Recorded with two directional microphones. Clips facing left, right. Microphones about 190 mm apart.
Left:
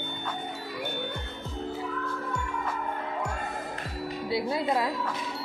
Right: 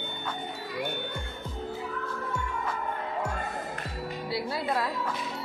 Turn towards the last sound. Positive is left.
turn(degrees=15)  # may be behind; listen again after turning